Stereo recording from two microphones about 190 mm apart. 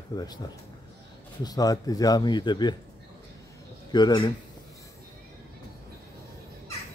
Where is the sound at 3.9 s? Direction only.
25° left (ahead or behind).